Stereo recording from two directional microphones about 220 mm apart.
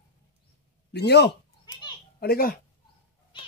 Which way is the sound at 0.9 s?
50° left (ahead or behind).